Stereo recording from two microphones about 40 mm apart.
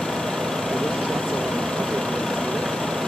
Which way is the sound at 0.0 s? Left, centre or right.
Centre.